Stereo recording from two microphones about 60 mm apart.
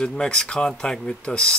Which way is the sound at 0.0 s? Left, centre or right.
Centre.